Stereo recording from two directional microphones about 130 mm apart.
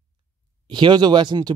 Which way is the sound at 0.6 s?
35° right (ahead or behind).